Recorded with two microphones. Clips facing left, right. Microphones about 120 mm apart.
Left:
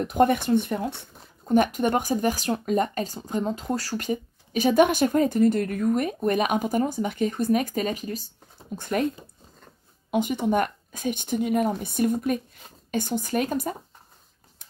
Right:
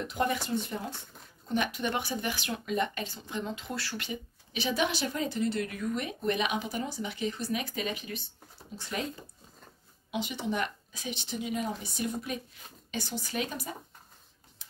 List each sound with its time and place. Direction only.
0.0 s speech: 50° left (ahead or behind)
1.5 s speech: 45° left (ahead or behind)
8.7 s speech: 55° left (ahead or behind)
10.1 s speech: 50° left (ahead or behind)